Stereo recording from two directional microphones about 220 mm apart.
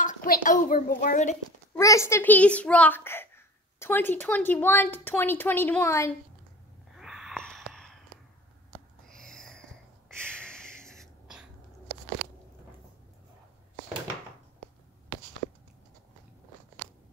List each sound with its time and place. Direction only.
0.0 s a woman's voice: 40° left (ahead or behind)
1.8 s a child's voice: 15° left (ahead or behind)
7.0 s wheeze: centre (ahead or behind)
8.7 s a sound: 5° left (ahead or behind)
10.0 s snort: 5° left (ahead or behind)